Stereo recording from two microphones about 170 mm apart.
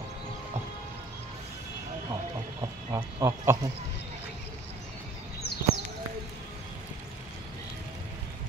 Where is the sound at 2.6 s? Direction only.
20° right (ahead or behind).